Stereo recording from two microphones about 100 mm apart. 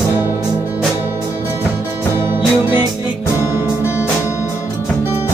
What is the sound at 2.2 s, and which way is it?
Music, 20° right (ahead or behind).